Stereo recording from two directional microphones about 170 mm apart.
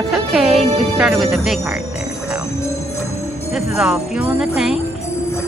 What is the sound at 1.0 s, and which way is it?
Speech, centre (ahead or behind).